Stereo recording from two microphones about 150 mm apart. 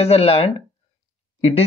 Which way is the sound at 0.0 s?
40° left (ahead or behind).